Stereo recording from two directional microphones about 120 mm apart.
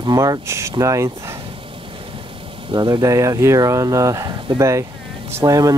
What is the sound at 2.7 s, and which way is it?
Speech, 35° right (ahead or behind).